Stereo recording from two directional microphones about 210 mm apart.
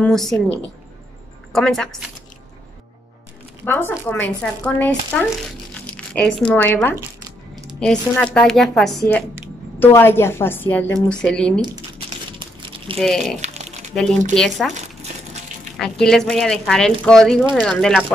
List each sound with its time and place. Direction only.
0.0 s speech: centre (ahead or behind)
3.6 s a woman's voice: 10° left (ahead or behind)
12.4 s a sound: 25° right (ahead or behind)
13.0 s speech: 5° left (ahead or behind)
13.4 s crumpling: 30° right (ahead or behind)
14.3 s speech: 5° left (ahead or behind)
15.8 s speech: centre (ahead or behind)